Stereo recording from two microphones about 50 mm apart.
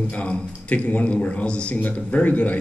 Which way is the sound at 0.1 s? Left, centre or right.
Left.